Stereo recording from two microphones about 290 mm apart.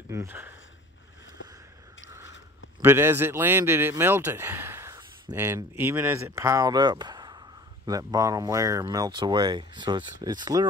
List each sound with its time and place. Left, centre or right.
0.1 s speech: centre
1.4 s a sound: left
2.8 s speech: centre